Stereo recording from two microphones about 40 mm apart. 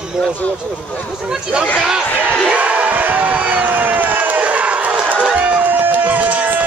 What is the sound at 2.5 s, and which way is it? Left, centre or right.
Crowd, right.